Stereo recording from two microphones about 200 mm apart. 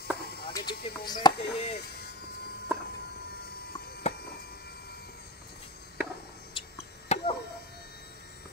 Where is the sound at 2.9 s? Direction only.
55° left (ahead or behind).